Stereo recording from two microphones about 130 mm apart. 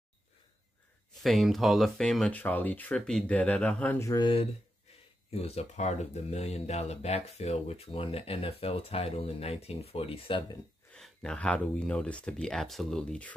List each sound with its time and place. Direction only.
1.2 s speech: centre (ahead or behind)
4.1 s speech: 40° left (ahead or behind)
5.3 s speech: 50° left (ahead or behind)
10.9 s speech: 5° left (ahead or behind)